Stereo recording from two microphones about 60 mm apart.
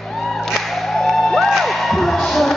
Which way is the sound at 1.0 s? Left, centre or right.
Centre.